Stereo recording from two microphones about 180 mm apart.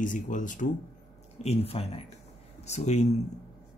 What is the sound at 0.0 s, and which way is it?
Speech, 45° left (ahead or behind).